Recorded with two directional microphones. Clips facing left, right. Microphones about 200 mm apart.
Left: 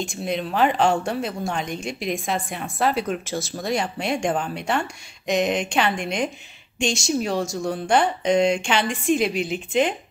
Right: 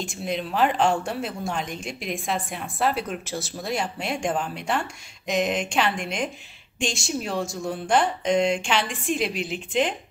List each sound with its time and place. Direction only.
0.0 s speech: centre (ahead or behind)
6.9 s speech: 40° left (ahead or behind)
7.2 s speech: centre (ahead or behind)